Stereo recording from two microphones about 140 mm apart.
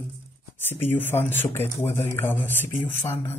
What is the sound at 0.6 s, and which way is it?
Speech, 15° left (ahead or behind).